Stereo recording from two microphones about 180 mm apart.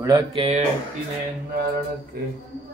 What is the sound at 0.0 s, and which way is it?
Mantra, 25° right (ahead or behind).